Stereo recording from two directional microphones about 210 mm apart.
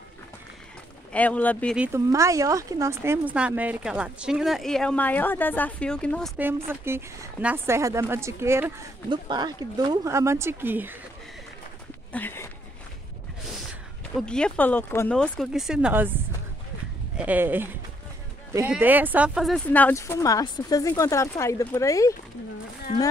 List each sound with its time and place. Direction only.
1.1 s speech: 5° left (ahead or behind)
1.8 s speech: 10° right (ahead or behind); by 6.3 s 5° left (ahead or behind)
6.3 s speech: 10° right (ahead or behind)
12.1 s speech: 10° left (ahead or behind)
14.1 s speech: 5° left (ahead or behind)
17.2 s speech: 10° right (ahead or behind); by 22.1 s 15° left (ahead or behind)